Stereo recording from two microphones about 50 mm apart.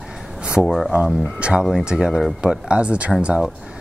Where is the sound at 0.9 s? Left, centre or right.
Right.